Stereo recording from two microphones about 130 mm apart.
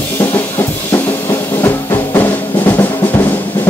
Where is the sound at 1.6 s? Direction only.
20° left (ahead or behind).